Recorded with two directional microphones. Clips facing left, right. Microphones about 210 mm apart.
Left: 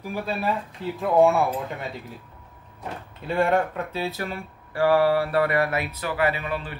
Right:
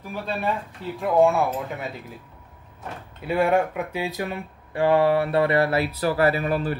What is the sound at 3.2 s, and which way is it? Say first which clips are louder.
Speech: right 1 dB; 10° right (ahead or behind).